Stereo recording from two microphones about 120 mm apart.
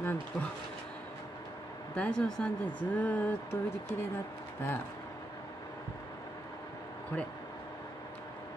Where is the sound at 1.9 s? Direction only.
10° left (ahead or behind).